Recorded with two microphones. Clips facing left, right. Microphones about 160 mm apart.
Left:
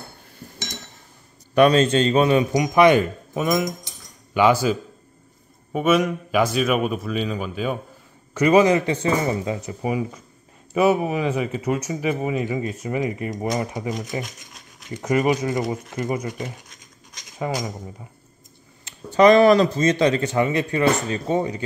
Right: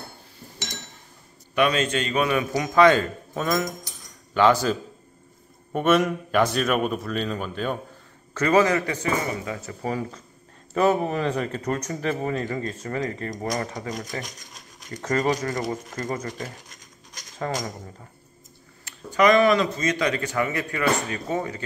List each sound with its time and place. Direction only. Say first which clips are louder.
1.5 s a man's voice: left 7 dB; 35° left (ahead or behind); by 17.7 s 10° left (ahead or behind)
18.9 s speech: left 5 dB; 30° left (ahead or behind)